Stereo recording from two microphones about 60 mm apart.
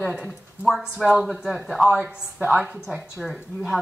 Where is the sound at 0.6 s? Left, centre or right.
Centre.